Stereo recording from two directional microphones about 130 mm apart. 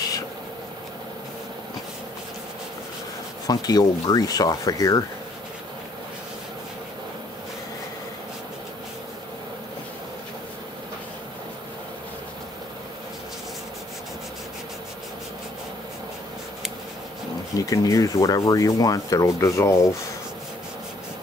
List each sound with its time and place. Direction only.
3.4 s speech: 30° left (ahead or behind)
17.6 s speech: 25° left (ahead or behind)